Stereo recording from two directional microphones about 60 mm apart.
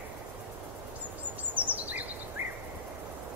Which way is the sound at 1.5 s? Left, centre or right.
Right.